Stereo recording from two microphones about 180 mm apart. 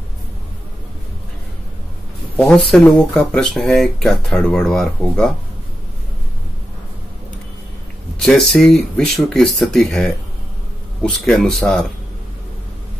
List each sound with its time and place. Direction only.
2.3 s speech: 5° left (ahead or behind)
8.2 s speech: centre (ahead or behind)